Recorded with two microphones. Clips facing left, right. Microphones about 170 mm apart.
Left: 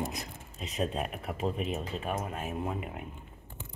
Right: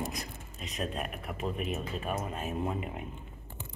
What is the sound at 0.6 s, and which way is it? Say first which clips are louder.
A woman's voice: left 3 dB; 30° left (ahead or behind).